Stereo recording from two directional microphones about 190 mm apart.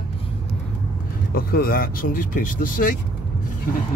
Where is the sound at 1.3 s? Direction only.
50° left (ahead or behind).